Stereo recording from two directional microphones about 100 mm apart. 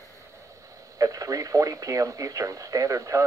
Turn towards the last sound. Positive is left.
turn(degrees=-30)  # may be behind; listen again after turning